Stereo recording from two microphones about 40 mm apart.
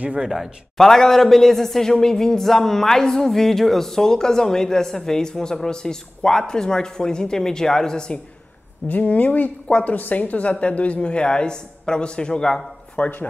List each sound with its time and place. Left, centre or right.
0.2 s speech: centre
0.7 s a man's voice: centre
8.8 s speech: left
9.7 s a woman's voice: left
9.9 s speech: left; by 12.6 s centre
13.0 s speech: left